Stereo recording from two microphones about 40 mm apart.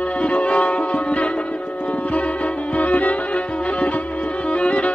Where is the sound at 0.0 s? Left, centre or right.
Left.